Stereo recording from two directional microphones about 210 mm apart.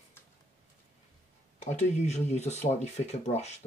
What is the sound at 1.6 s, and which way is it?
Speech, 35° left (ahead or behind).